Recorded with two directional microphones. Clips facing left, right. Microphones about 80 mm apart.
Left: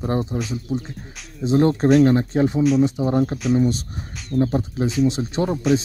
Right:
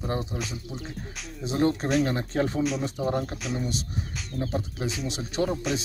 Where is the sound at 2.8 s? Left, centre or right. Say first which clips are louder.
Left 9 dB; centre.